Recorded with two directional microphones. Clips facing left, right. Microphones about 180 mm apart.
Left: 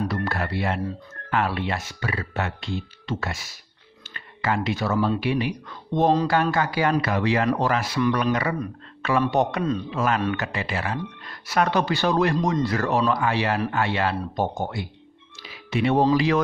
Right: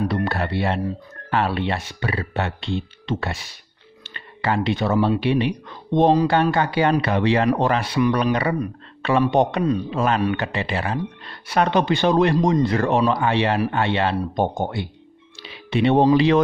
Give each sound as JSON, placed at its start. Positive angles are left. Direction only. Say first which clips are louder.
{"t": 0.1, "sound": "speech", "louder": "right 4 dB", "side_deg": -25}